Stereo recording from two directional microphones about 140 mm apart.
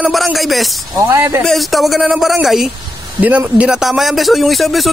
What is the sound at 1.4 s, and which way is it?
A man's voice, centre (ahead or behind).